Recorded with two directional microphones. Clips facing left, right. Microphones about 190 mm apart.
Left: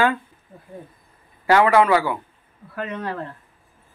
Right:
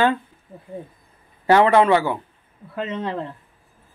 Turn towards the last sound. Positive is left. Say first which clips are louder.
# right 2 dB
turn(degrees=-20)  # may be behind; listen again after turning